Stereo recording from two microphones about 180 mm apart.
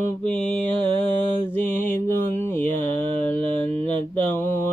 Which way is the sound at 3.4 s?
35° right (ahead or behind).